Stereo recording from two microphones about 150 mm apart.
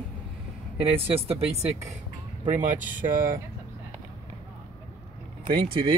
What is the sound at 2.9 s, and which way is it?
Speech, 65° right (ahead or behind).